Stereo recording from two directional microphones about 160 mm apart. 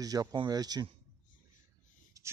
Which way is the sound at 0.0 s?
25° right (ahead or behind).